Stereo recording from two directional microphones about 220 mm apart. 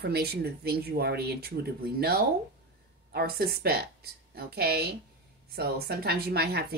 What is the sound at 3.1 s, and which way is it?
Speech, 45° right (ahead or behind).